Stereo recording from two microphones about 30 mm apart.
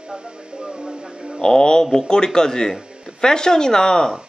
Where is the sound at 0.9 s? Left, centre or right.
Centre.